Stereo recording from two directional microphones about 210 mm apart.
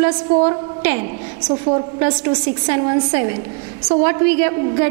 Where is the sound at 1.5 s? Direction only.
20° right (ahead or behind).